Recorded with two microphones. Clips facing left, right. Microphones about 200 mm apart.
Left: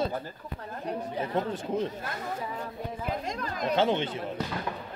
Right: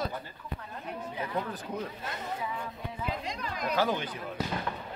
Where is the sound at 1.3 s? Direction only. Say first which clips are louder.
Left 6 dB; 25° left (ahead or behind).